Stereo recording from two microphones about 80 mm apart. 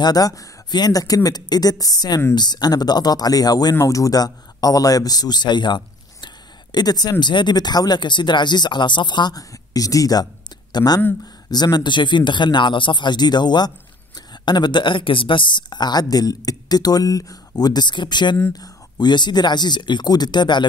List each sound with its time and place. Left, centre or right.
0.0 s speech: left
0.7 s speech: left
6.2 s speech: left
9.4 s speech: left
18.5 s speech: left